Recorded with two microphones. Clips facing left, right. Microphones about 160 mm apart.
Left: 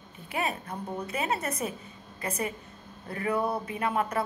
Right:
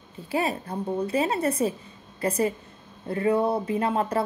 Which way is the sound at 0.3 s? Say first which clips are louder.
Right 5 dB; 30° right (ahead or behind).